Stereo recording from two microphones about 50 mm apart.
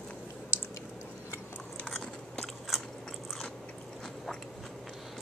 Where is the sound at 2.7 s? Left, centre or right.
Centre.